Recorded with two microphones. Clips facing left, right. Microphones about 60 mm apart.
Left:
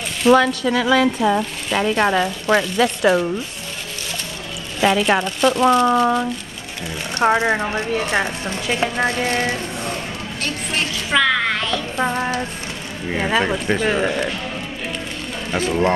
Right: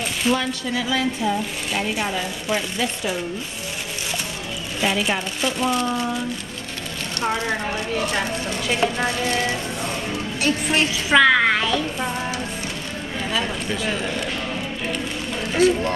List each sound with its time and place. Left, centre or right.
0.3 s speech: left
5.0 s speech: left
7.3 s speech: left
8.7 s speech: centre
9.0 s speech: left
10.4 s a woman's voice: centre
12.0 s speech: left
15.5 s speech: left